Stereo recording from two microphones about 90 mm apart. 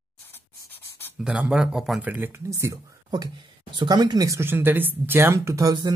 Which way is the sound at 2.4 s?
35° right (ahead or behind).